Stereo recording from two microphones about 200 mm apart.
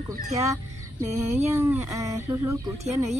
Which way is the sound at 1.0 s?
15° right (ahead or behind).